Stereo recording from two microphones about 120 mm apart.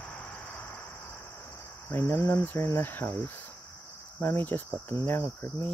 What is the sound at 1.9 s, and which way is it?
Cricket, 15° left (ahead or behind).